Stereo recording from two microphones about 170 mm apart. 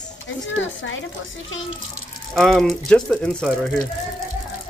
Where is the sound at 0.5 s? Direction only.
90° left.